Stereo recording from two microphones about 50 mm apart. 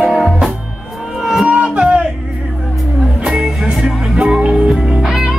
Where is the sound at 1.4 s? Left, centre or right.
Right.